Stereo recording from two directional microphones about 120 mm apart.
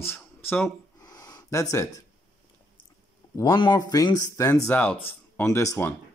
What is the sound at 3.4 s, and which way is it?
Speech, 40° left (ahead or behind).